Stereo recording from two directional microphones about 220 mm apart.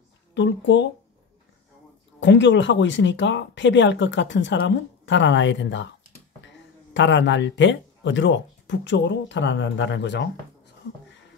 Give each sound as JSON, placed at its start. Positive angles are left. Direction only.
{"t": 0.3, "sound": "speech", "side_deg": 55}
{"t": 2.1, "sound": "speech", "side_deg": 55}